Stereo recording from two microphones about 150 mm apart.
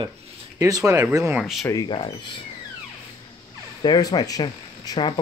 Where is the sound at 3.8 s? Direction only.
25° left (ahead or behind).